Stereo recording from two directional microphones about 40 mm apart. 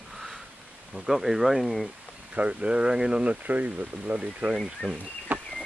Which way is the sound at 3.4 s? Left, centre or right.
Right.